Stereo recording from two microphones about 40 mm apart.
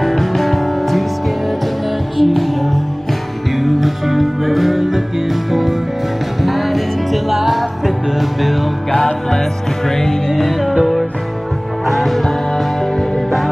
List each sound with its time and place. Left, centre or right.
0.0 s music: centre
2.1 s music: centre
8.9 s music: centre
10.4 s music: centre
10.7 s music: centre
11.8 s music: centre